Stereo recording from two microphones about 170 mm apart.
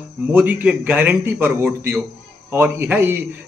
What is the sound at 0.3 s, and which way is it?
A man's voice, 10° right (ahead or behind).